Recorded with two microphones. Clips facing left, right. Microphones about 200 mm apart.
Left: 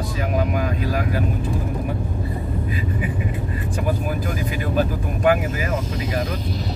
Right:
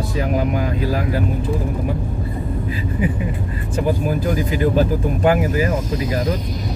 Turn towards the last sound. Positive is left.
turn(degrees=-35)  # may be behind; listen again after turning